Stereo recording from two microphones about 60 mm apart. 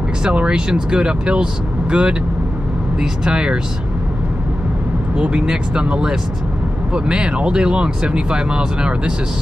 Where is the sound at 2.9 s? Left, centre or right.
Centre.